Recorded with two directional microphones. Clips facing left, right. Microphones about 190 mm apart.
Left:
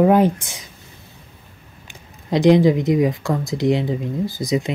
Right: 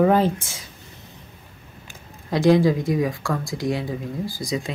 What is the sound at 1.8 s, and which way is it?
Speech, 20° left (ahead or behind).